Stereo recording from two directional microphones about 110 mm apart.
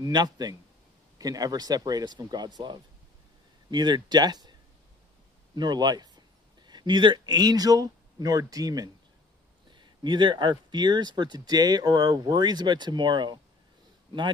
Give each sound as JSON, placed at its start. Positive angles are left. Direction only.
{"t": 0.0, "sound": "speech", "side_deg": -40}
{"t": 5.6, "sound": "speech", "side_deg": -40}
{"t": 9.7, "sound": "speech", "side_deg": -45}